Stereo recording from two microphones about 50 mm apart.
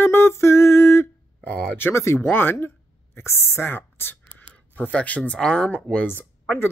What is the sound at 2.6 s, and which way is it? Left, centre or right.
A woman's voice, left.